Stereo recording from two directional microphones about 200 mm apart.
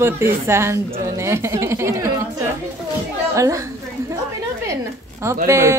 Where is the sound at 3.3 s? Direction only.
15° right (ahead or behind).